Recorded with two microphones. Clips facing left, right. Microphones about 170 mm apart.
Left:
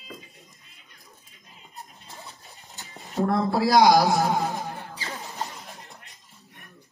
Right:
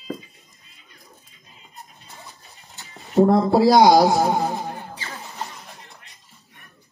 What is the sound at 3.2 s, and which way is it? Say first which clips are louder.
Speech: right 8 dB; 25° right (ahead or behind).